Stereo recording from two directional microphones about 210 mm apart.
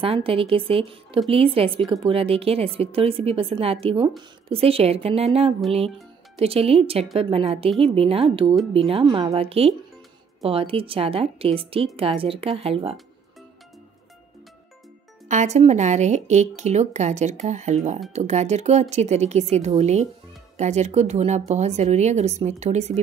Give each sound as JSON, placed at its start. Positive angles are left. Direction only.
{"t": 0.0, "sound": "speech", "side_deg": -25}
{"t": 15.2, "sound": "speech", "side_deg": -35}